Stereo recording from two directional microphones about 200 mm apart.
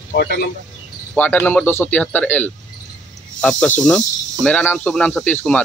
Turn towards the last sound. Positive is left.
turn(degrees=5)  # may be behind; listen again after turning